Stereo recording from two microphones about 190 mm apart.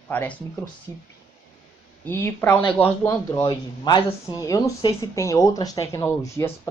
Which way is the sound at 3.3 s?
25° left (ahead or behind).